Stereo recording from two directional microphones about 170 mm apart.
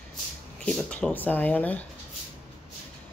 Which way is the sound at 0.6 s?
5° left (ahead or behind).